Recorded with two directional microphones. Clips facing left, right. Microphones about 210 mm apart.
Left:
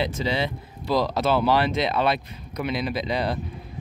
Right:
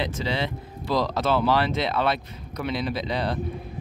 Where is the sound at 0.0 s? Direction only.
10° left (ahead or behind).